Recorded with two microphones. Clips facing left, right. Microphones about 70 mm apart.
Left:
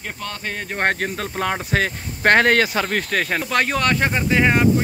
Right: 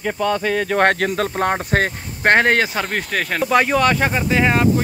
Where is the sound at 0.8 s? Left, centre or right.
Right.